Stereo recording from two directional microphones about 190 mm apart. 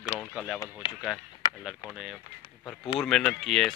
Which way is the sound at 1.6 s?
5° right (ahead or behind).